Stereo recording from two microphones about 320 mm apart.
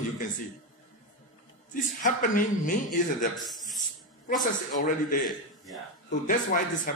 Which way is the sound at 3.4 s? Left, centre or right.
Centre.